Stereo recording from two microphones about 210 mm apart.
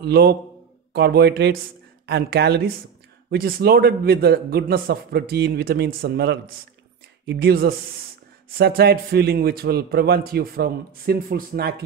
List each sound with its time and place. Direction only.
0.0 s a man's voice: 50° right (ahead or behind)